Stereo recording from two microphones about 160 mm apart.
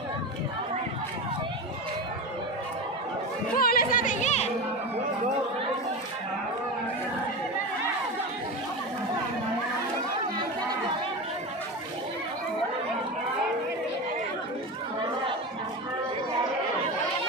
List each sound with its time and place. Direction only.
3.5 s music: 65° left (ahead or behind); by 4.5 s 45° left (ahead or behind)